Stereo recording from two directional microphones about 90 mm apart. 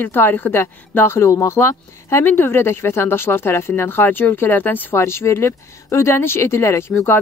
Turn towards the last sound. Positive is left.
turn(degrees=25)  # may be behind; listen again after turning